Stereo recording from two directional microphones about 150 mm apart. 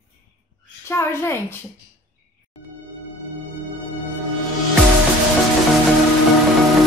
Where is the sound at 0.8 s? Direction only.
15° left (ahead or behind).